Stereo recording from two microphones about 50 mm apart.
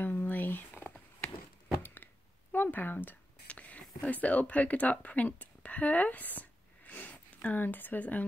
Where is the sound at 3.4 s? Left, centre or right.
Left.